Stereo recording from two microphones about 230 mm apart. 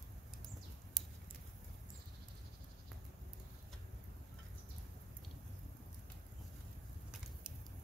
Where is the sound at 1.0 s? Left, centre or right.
Centre.